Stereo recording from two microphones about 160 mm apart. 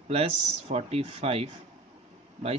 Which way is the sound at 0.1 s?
40° right (ahead or behind).